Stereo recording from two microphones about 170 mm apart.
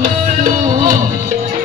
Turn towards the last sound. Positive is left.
turn(degrees=-50)  # may be behind; listen again after turning